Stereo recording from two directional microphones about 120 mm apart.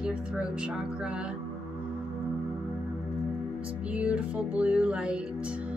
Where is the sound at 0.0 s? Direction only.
10° right (ahead or behind).